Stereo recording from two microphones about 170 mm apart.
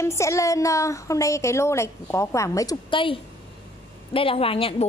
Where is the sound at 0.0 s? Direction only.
15° left (ahead or behind).